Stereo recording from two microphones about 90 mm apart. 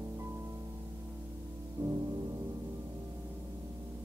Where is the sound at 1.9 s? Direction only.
45° right (ahead or behind).